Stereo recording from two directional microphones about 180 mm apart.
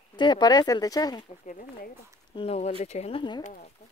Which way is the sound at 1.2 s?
45° left (ahead or behind).